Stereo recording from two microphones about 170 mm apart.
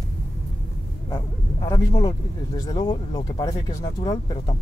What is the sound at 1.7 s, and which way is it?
Speech, 25° left (ahead or behind).